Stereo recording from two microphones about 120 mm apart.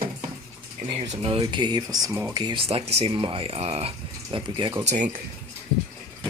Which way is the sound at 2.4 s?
50° right (ahead or behind).